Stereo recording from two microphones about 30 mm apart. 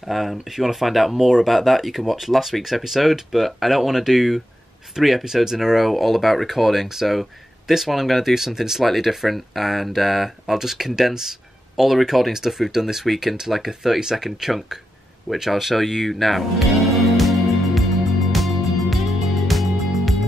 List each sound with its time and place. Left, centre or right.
0.1 s speech: centre
5.2 s speech: centre
5.8 s speech: centre
8.5 s speech: centre
10.6 s speech: centre
12.3 s speech: centre
14.2 s speech: centre
15.7 s music: centre